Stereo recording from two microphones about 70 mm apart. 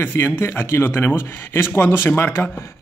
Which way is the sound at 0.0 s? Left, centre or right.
Left.